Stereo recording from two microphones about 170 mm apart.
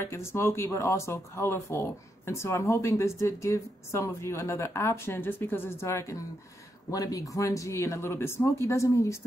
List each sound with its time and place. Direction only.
0.0 s speech: 15° left (ahead or behind)